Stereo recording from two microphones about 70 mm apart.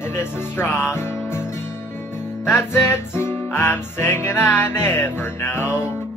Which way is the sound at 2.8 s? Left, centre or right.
Left.